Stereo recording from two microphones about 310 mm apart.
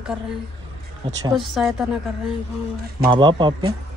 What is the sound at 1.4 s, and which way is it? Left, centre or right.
Speech, centre.